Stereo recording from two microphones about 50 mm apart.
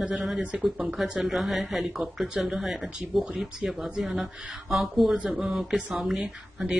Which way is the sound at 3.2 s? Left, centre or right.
Right.